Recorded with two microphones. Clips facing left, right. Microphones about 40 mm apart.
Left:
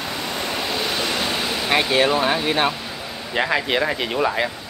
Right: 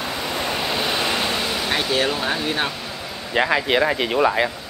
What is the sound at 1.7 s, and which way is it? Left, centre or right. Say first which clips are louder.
Speech: left 5 dB; centre.